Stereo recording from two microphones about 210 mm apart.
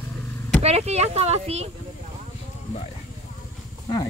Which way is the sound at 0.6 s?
30° right (ahead or behind).